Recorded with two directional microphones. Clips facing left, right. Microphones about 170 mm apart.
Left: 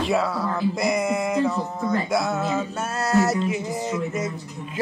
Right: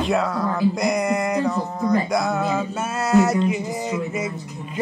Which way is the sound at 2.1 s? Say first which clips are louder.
Right 2 dB; centre (ahead or behind).